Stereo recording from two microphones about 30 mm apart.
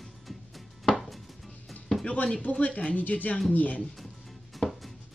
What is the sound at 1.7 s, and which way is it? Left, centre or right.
Music, centre.